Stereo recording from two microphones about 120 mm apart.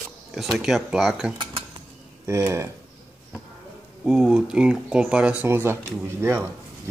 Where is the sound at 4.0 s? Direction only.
5° right (ahead or behind).